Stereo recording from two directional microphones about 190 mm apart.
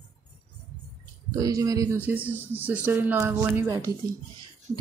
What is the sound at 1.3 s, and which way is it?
Speech, 20° right (ahead or behind).